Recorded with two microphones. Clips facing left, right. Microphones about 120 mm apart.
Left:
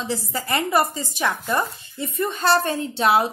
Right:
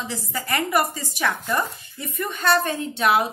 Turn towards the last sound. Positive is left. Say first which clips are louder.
# left 1 dB
turn(degrees=30)  # may be behind; listen again after turning